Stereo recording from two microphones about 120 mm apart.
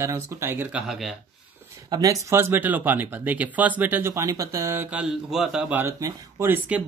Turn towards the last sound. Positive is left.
turn(degrees=-15)  # may be behind; listen again after turning